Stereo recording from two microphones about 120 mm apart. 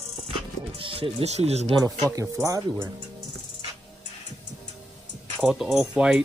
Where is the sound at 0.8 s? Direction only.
50° right (ahead or behind).